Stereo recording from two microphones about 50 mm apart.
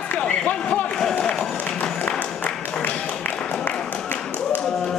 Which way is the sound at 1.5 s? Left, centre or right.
Left.